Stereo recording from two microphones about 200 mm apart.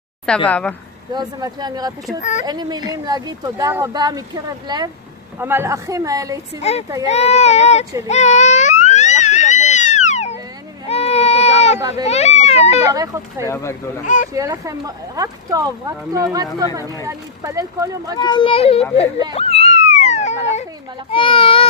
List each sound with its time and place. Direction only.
0.5 s speech: 5° left (ahead or behind)
1.1 s speech: 20° right (ahead or behind)
6.7 s speech: 30° left (ahead or behind)
8.1 s baby cry: 35° left (ahead or behind)
12.1 s a child's voice: 30° left (ahead or behind)
12.9 s speech: 15° right (ahead or behind)
13.4 s speech: 15° left (ahead or behind)
14.0 s speech: 40° left (ahead or behind)
14.3 s speech: 15° right (ahead or behind)
18.1 s a child's voice: 20° left (ahead or behind)
19.3 s cat: 30° left (ahead or behind)
21.1 s a child's voice: 25° left (ahead or behind)